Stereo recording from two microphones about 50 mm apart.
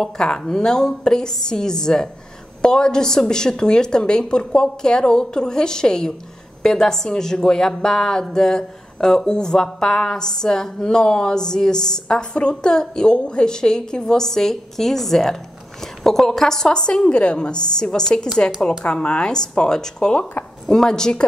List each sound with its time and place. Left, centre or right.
0.0 s speech: centre